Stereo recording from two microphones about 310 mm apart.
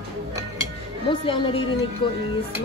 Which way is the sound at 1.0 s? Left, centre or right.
Centre.